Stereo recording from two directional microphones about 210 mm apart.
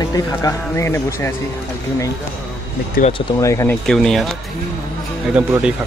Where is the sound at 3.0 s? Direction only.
45° left (ahead or behind).